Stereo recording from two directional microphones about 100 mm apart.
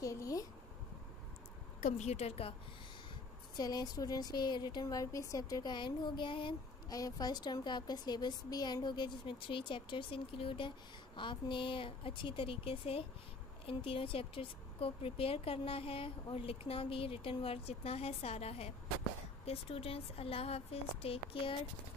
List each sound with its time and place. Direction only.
0.0 s a sound: 35° left (ahead or behind)
2.0 s a woman's voice: 90° left
3.5 s a woman's voice: 40° left (ahead or behind); by 6.5 s 55° left (ahead or behind)
6.9 s a woman's voice: 40° left (ahead or behind); by 18.7 s 90° left
19.4 s speech: 70° left (ahead or behind)